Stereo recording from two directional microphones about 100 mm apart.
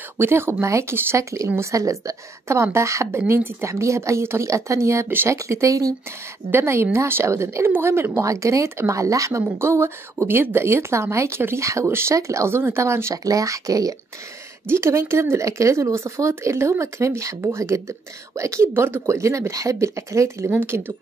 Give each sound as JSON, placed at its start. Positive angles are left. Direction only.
{"t": 0.2, "sound": "speech", "side_deg": -25}